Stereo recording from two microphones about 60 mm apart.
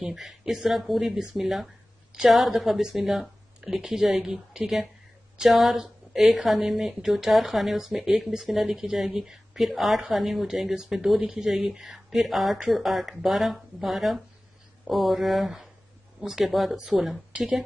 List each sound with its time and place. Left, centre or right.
0.0 s a woman's voice: centre
17.3 s speech: centre